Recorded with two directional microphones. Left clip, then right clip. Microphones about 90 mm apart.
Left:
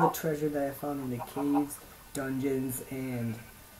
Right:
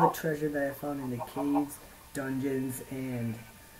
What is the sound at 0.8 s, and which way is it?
Speech, 20° right (ahead or behind).